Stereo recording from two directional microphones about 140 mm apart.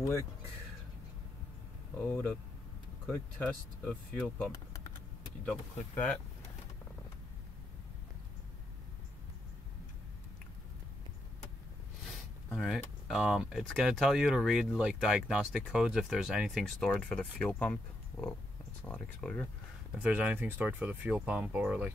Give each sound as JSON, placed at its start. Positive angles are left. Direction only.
{"t": 2.0, "sound": "speech", "side_deg": 10}
{"t": 12.5, "sound": "speech", "side_deg": 0}
{"t": 18.9, "sound": "speech", "side_deg": 5}
{"t": 19.9, "sound": "speech", "side_deg": -10}